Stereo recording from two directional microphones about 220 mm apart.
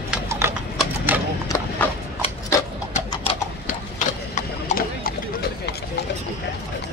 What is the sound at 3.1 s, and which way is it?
Mechanisms, 25° left (ahead or behind).